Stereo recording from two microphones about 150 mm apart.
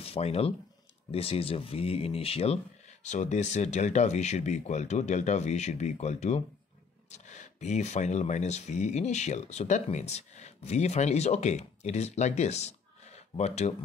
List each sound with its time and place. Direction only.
0.0 s speech: 40° left (ahead or behind)